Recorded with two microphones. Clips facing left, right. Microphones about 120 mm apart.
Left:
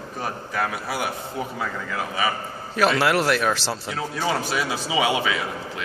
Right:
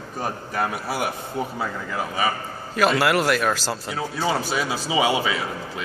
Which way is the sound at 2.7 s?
Centre (ahead or behind).